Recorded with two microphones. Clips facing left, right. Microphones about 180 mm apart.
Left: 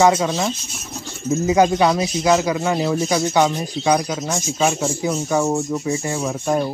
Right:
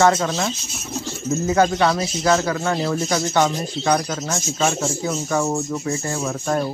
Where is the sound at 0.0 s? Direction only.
10° left (ahead or behind).